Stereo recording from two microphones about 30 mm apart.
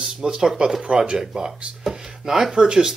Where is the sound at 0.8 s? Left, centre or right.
Right.